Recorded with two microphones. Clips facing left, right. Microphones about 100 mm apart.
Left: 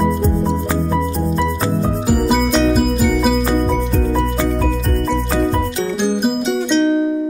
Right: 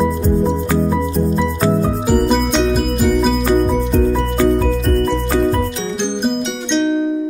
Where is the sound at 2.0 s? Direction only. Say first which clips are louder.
Even; 5° left (ahead or behind).